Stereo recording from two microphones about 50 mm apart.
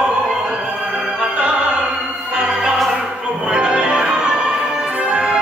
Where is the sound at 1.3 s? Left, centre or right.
Right.